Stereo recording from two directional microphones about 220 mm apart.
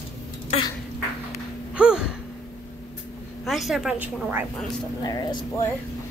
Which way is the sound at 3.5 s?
Centre (ahead or behind).